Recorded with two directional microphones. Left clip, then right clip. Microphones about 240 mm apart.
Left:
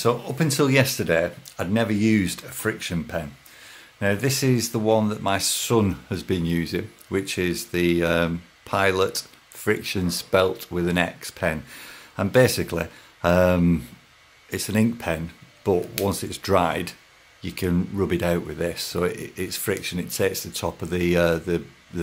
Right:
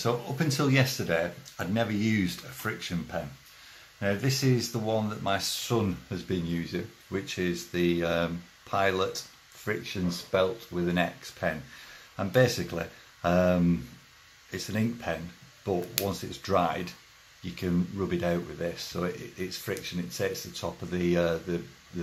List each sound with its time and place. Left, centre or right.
0.0 s speech: left